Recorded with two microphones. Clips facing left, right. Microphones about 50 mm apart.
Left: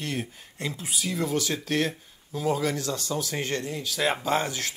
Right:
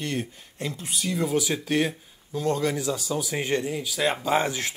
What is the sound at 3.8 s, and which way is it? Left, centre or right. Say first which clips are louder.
Speech: left 2 dB; centre.